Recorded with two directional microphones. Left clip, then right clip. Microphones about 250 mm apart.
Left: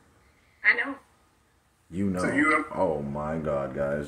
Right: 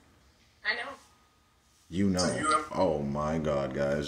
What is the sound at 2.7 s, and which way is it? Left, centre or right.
Speech, right.